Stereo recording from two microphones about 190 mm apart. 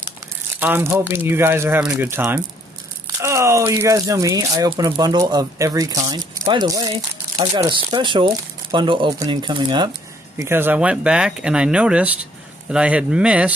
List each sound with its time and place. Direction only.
0.6 s speech: 10° right (ahead or behind)
10.3 s speech: 10° right (ahead or behind)